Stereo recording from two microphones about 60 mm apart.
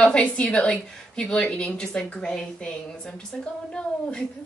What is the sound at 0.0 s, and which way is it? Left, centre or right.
Speech, centre.